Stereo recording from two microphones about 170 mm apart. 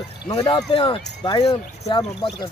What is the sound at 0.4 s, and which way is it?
Speech, 30° left (ahead or behind).